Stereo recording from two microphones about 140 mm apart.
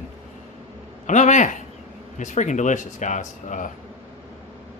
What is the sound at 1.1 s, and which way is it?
Speech, 60° left (ahead or behind).